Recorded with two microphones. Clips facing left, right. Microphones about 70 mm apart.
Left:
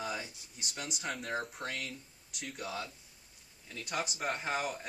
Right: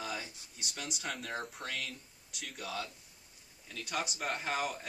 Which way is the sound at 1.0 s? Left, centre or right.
Centre.